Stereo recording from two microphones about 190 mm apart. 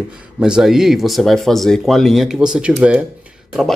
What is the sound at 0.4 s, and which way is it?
Speech, centre (ahead or behind).